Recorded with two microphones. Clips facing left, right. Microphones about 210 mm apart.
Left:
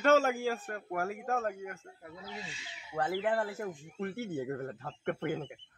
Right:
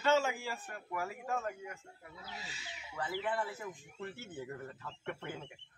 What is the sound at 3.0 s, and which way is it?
Speech, 50° left (ahead or behind).